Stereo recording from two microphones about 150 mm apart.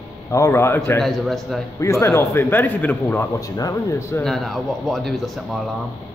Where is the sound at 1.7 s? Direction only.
20° left (ahead or behind).